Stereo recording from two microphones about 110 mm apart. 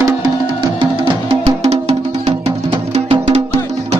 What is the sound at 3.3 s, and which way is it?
Music, 70° right (ahead or behind).